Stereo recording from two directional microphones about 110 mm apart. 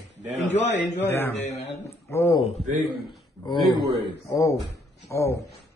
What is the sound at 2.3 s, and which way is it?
Speech, 70° left (ahead or behind).